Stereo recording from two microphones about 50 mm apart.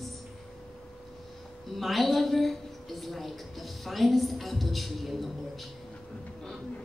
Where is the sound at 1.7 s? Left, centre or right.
Centre.